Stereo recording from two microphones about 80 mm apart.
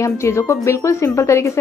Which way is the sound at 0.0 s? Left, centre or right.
Left.